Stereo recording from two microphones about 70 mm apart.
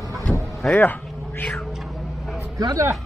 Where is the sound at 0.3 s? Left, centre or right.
Centre.